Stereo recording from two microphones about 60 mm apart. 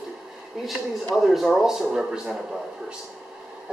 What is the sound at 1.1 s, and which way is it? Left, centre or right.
Speech, centre.